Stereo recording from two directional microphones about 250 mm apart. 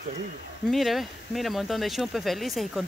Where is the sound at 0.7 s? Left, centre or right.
Centre.